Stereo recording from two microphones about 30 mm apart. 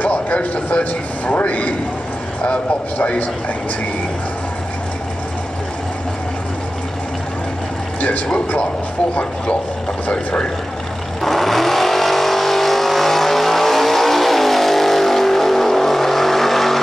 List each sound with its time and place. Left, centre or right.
0.1 s vehicle: left
1.2 s speech: left
2.4 s a man's voice: left
11.2 s vehicle: centre